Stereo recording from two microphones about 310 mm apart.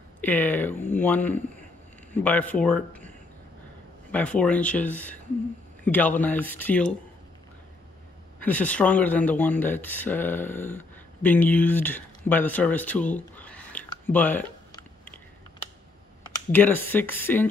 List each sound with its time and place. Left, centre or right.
0.2 s speech: centre
4.1 s speech: centre
8.4 s speech: centre
16.5 s speech: centre